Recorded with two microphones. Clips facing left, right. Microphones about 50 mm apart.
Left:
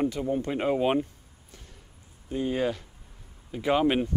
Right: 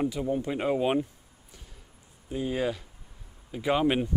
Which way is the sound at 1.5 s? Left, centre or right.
Centre.